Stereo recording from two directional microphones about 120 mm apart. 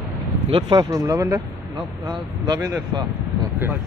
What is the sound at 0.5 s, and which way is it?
Speech, 40° right (ahead or behind).